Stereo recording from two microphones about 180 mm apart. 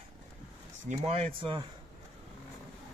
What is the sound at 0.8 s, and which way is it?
Speech, 35° right (ahead or behind).